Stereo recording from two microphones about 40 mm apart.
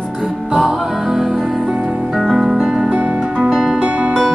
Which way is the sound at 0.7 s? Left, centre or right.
Centre.